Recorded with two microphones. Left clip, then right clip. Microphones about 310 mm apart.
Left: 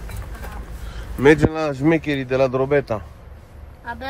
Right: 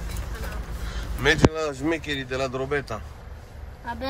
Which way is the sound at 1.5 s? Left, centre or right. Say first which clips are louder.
Left 7 dB; left.